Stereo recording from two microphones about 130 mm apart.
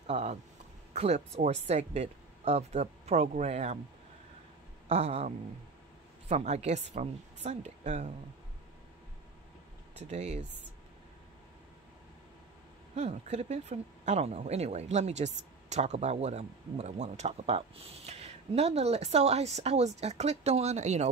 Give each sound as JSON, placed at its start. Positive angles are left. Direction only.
{"t": 0.0, "sound": "speech", "side_deg": -60}
{"t": 4.8, "sound": "speech", "side_deg": -50}
{"t": 9.9, "sound": "speech", "side_deg": -55}
{"t": 12.9, "sound": "speech", "side_deg": -55}